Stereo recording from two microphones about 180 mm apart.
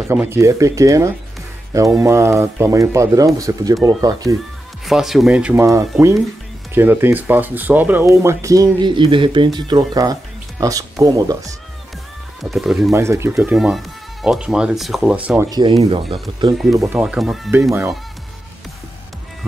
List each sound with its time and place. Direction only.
0.1 s speech: 15° right (ahead or behind)
4.8 s speech: centre (ahead or behind); by 11.5 s 20° right (ahead or behind)
12.4 s speech: centre (ahead or behind)
12.9 s speech: 15° right (ahead or behind)
13.4 s speech: 5° right (ahead or behind)
16.1 s speech: 25° right (ahead or behind)
17.0 s speech: centre (ahead or behind)
17.5 s speech: 15° right (ahead or behind)